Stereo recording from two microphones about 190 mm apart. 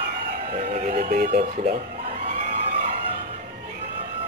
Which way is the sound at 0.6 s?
35° right (ahead or behind).